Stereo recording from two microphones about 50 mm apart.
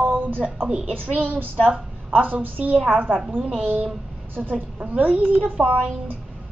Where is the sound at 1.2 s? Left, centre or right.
Right.